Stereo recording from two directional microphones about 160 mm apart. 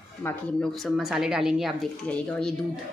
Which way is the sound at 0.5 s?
Centre (ahead or behind).